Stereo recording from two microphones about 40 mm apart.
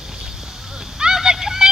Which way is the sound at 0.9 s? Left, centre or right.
Centre.